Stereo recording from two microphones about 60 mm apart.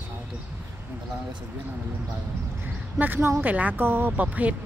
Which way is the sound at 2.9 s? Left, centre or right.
Right.